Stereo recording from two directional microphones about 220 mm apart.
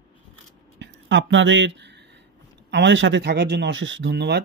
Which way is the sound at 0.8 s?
55° right (ahead or behind).